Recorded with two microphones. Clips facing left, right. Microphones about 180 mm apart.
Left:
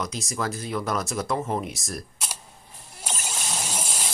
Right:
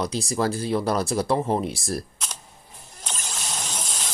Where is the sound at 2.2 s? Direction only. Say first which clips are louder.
Left 1 dB; 10° left (ahead or behind).